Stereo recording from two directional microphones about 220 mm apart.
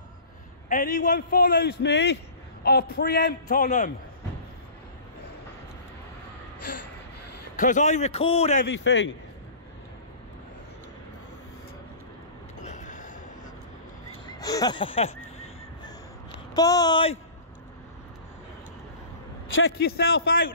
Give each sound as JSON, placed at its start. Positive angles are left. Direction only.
{"t": 0.7, "sound": "a man's voice", "side_deg": 35}
{"t": 7.5, "sound": "a man's voice", "side_deg": 35}
{"t": 8.6, "sound": "a man's voice", "side_deg": 55}
{"t": 12.5, "sound": "train", "side_deg": 35}
{"t": 14.2, "sound": "a sound", "side_deg": 15}
{"t": 16.5, "sound": "speech", "side_deg": 15}
{"t": 19.8, "sound": "a man's voice", "side_deg": 45}